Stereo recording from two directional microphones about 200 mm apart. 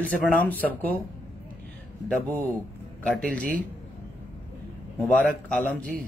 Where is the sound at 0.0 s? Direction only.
5° left (ahead or behind).